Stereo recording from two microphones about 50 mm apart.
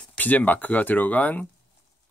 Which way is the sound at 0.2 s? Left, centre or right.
Left.